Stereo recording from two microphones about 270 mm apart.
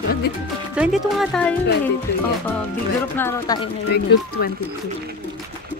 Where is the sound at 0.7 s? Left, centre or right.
Centre.